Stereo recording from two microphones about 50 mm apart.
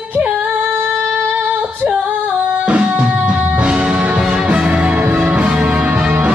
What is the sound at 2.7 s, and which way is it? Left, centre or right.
Music, right.